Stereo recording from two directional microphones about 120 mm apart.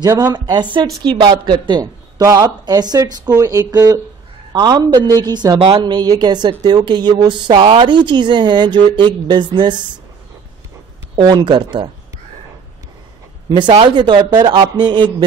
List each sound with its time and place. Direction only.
0.0 s speech: 30° right (ahead or behind)
11.1 s speech: 40° right (ahead or behind)
13.5 s speech: 40° right (ahead or behind)